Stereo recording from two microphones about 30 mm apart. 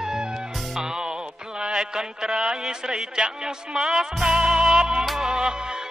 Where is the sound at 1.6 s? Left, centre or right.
Right.